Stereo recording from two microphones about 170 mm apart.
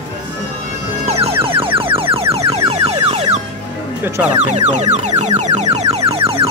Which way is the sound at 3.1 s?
40° right (ahead or behind).